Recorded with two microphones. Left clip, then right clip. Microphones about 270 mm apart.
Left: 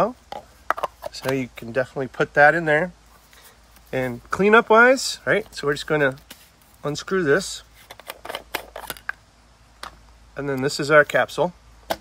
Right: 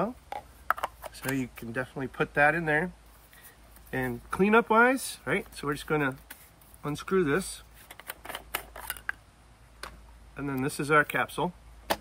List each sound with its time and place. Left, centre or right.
0.0 s speech: centre
3.9 s speech: centre
6.8 s a sound: centre
10.3 s speech: centre